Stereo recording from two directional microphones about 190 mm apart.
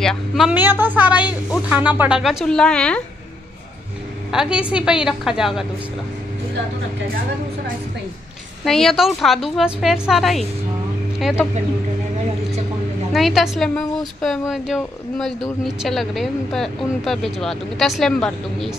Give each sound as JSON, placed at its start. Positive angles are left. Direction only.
{"t": 0.0, "sound": "a woman's voice", "side_deg": 0}
{"t": 4.3, "sound": "a woman's voice", "side_deg": -5}
{"t": 8.6, "sound": "a woman's voice", "side_deg": 0}
{"t": 13.1, "sound": "a woman's voice", "side_deg": 0}